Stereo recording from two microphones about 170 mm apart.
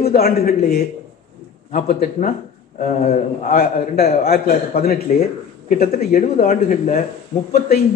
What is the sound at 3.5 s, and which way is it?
A man's voice, 60° left (ahead or behind).